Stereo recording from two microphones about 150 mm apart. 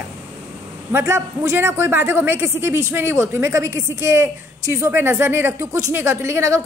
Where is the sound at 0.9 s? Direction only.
20° right (ahead or behind).